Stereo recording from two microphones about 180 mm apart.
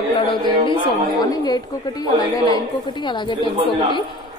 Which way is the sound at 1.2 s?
20° left (ahead or behind).